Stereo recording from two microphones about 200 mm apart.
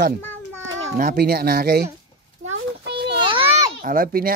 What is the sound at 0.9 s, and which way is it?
Speech, 50° right (ahead or behind).